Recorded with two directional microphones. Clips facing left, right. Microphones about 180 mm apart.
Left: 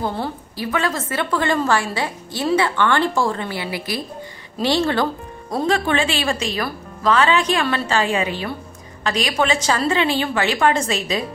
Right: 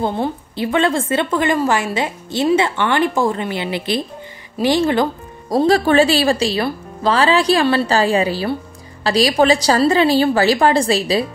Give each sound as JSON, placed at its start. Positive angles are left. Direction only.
{"t": 0.0, "sound": "a woman's voice", "side_deg": -25}
{"t": 5.5, "sound": "speech", "side_deg": -35}